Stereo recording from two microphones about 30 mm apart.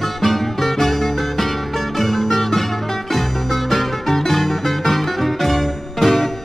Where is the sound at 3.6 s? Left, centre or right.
Centre.